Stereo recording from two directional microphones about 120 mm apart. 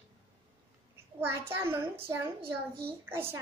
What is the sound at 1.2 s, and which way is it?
Speech, 20° right (ahead or behind).